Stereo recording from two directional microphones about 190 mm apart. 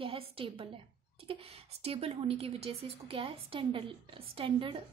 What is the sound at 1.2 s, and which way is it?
A woman's voice, 30° right (ahead or behind).